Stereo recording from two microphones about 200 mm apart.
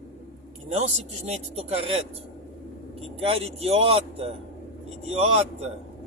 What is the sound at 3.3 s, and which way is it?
Speech, 30° right (ahead or behind).